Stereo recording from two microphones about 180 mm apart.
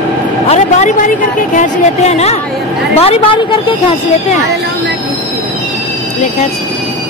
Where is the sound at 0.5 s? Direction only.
40° left (ahead or behind).